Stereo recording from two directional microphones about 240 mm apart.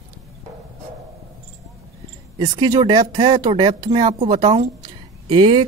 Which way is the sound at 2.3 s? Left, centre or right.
Centre.